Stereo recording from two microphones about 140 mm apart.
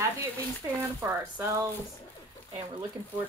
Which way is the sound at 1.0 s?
15° right (ahead or behind).